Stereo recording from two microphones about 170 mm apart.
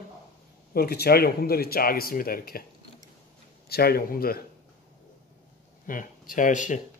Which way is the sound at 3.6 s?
65° left (ahead or behind).